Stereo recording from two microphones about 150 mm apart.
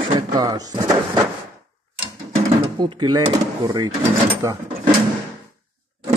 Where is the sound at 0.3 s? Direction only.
25° right (ahead or behind).